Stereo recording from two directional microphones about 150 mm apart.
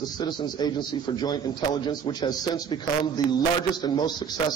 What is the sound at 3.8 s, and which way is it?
Speech, 30° left (ahead or behind).